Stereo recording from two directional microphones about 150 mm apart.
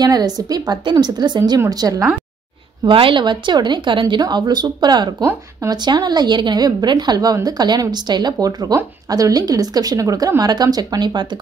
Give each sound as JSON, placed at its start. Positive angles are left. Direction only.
{"t": 0.0, "sound": "speech", "side_deg": -25}